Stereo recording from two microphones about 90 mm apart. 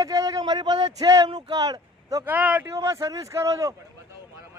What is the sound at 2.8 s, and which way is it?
Speech, 35° right (ahead or behind).